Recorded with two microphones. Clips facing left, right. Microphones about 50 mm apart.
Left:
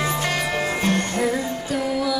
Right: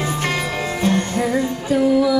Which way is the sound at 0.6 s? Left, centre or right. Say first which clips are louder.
Right 5 dB; left.